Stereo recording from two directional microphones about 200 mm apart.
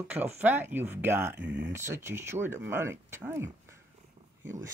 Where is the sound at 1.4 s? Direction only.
60° right (ahead or behind).